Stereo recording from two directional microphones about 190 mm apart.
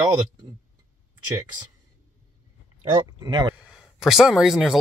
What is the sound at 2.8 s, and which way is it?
Speech, 20° right (ahead or behind).